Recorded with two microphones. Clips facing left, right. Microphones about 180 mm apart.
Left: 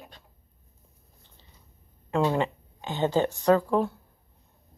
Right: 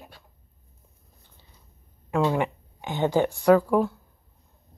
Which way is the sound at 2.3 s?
15° right (ahead or behind).